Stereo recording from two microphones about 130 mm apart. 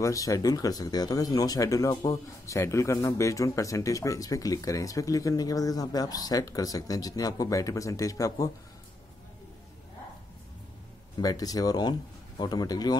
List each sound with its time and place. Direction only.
0.0 s speech: 25° left (ahead or behind)
11.1 s speech: 30° left (ahead or behind)